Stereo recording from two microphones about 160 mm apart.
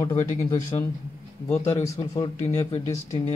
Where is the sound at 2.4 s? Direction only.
40° left (ahead or behind).